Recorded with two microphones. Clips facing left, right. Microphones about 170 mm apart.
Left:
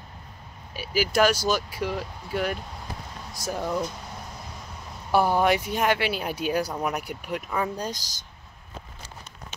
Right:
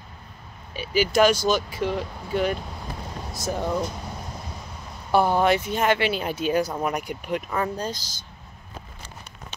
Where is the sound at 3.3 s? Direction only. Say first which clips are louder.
Right 3 dB; 10° left (ahead or behind).